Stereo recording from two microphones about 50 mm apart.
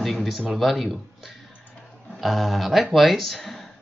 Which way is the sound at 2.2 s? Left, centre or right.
Centre.